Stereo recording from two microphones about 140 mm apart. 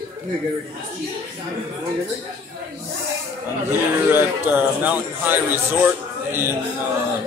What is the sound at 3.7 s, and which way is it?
Speech, 15° right (ahead or behind).